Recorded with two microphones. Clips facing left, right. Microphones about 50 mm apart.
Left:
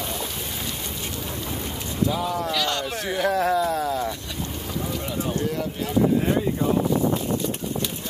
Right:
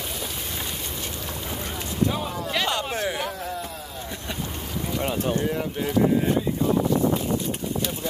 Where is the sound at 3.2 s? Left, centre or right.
Left.